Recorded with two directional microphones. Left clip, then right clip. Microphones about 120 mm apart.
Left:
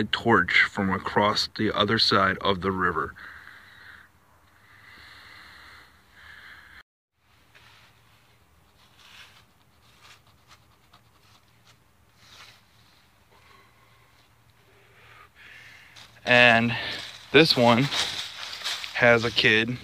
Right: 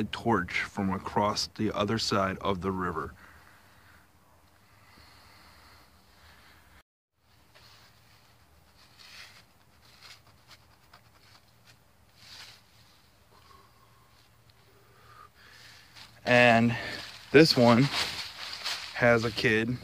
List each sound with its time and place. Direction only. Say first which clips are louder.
0.0 s speech: left 7 dB; 5° left (ahead or behind)
4.9 s a sound: left 9 dB; 15° right (ahead or behind)
12.3 s a sound: right 1 dB; 45° left (ahead or behind)
16.2 s speech: left 4 dB; 45° right (ahead or behind)
17.3 s speech: left 2 dB; 55° right (ahead or behind)
17.6 s speech: left 2 dB; 40° right (ahead or behind)
17.9 s speech: left 4 dB; 90° left
18.9 s speech: left 5 dB; 5° right (ahead or behind)